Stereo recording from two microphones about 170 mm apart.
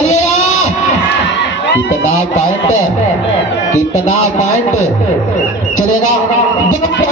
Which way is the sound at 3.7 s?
45° left (ahead or behind).